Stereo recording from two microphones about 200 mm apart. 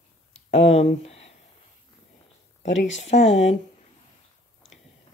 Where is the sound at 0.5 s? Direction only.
30° left (ahead or behind).